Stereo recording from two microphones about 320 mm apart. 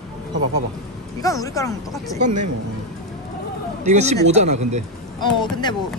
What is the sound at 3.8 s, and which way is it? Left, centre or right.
Speech, right.